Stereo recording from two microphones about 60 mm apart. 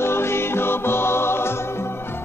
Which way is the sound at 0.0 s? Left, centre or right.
Left.